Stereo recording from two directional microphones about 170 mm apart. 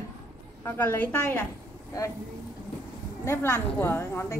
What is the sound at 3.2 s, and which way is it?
A woman's voice, 15° left (ahead or behind).